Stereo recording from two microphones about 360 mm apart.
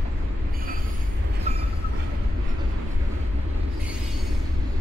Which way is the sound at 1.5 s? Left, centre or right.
Centre.